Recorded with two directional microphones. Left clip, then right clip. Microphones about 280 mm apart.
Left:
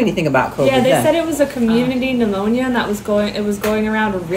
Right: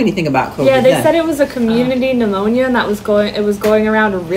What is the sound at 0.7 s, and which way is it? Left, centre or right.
A woman's voice, centre.